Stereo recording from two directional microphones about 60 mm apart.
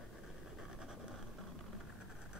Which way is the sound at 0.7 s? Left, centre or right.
Centre.